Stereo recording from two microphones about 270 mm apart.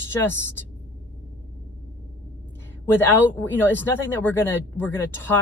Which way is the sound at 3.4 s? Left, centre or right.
Centre.